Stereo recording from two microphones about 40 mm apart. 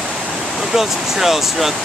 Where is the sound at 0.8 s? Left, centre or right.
Centre.